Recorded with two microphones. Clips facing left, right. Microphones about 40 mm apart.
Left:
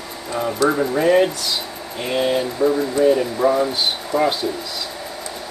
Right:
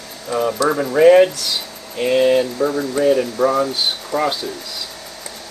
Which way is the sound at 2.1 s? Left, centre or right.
Centre.